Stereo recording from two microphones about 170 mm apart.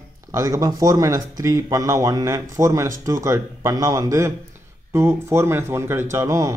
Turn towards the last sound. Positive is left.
turn(degrees=-20)  # may be behind; listen again after turning